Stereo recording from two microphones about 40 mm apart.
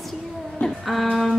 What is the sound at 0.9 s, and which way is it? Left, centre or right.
Speech, centre.